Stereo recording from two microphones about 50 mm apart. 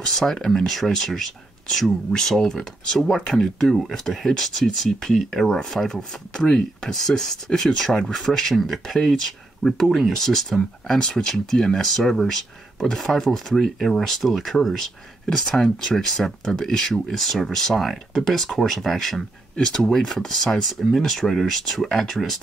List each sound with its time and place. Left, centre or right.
0.0 s speech: centre
5.9 s speech: left; by 22.4 s centre